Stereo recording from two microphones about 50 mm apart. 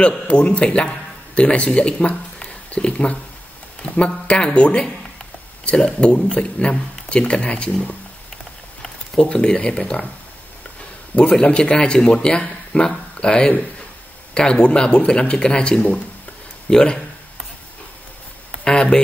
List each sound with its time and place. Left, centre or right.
0.3 s a man's voice: left
5.9 s speech: left
8.8 s speech: centre
11.1 s a man's voice: centre
18.6 s a sound: centre